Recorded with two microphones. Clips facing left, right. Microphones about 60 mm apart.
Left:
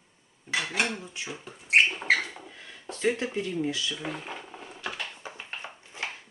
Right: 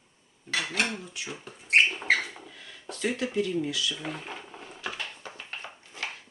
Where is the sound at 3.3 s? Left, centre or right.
Left.